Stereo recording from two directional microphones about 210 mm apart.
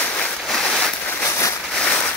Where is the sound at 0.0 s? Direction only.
5° left (ahead or behind).